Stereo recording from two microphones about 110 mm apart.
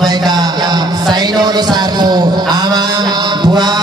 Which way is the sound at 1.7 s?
40° right (ahead or behind).